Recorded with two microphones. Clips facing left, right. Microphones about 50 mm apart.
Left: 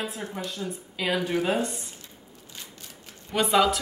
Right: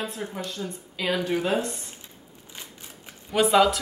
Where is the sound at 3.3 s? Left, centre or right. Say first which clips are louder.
Right 2 dB; centre.